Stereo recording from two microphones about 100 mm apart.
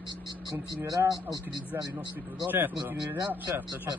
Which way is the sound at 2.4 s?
20° right (ahead or behind).